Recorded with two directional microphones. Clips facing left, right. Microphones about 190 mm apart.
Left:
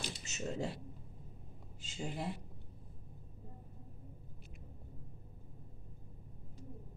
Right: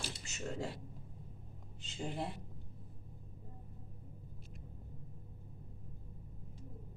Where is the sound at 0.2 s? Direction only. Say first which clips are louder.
Left 3 dB; 20° left (ahead or behind).